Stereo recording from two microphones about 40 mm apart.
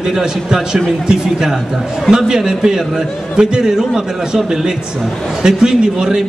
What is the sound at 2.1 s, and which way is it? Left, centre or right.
A man's voice, centre.